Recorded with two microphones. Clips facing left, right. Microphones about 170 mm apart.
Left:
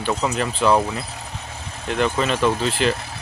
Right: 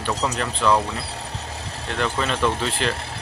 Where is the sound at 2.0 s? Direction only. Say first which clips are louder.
Left 3 dB; 5° left (ahead or behind).